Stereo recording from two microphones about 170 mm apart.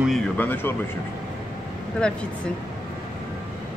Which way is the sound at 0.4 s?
10° left (ahead or behind).